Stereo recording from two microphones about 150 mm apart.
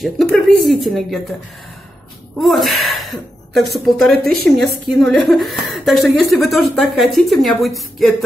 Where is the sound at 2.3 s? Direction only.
Centre (ahead or behind).